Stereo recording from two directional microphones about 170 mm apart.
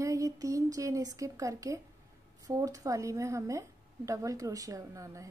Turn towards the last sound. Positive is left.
turn(degrees=-20)  # may be behind; listen again after turning